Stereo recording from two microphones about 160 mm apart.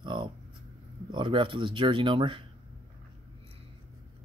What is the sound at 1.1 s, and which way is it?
Speech, 30° right (ahead or behind).